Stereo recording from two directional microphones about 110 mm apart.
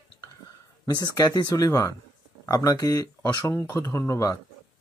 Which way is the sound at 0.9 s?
35° left (ahead or behind).